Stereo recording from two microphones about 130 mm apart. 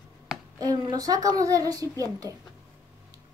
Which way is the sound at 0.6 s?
30° right (ahead or behind).